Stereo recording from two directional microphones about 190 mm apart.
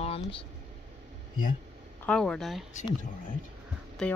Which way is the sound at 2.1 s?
5° left (ahead or behind).